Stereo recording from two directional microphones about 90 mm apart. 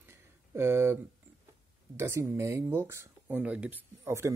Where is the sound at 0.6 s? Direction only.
30° right (ahead or behind).